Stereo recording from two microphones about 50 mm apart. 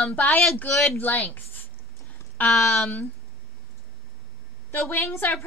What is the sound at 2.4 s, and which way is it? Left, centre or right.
Speech, centre.